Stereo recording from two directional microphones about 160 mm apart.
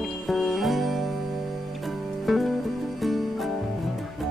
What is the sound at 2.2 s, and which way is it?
Music, centre (ahead or behind).